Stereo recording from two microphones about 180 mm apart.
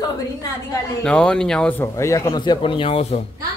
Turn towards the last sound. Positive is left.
turn(degrees=30)  # may be behind; listen again after turning